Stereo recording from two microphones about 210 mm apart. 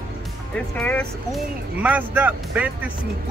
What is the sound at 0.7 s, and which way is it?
Speech, 10° left (ahead or behind).